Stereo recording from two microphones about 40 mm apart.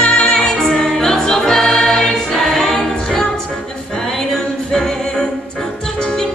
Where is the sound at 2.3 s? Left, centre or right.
Centre.